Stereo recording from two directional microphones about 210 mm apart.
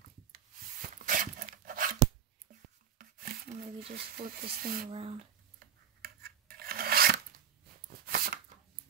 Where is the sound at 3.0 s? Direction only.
45° right (ahead or behind).